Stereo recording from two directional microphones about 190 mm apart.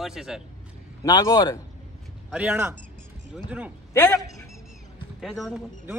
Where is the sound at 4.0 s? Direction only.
10° left (ahead or behind).